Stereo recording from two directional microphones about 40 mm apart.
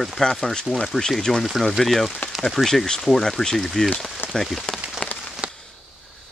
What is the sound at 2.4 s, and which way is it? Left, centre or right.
Speech, centre.